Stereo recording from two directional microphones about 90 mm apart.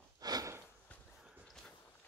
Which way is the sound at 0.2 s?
45° right (ahead or behind).